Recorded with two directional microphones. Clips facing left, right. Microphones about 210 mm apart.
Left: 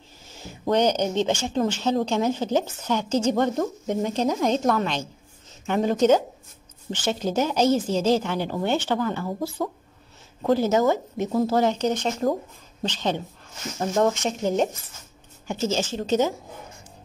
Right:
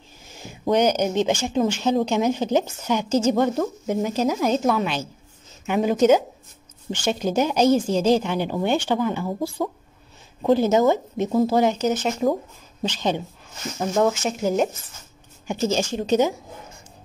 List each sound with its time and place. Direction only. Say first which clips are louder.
0.2 s speech: right 2 dB; 15° right (ahead or behind)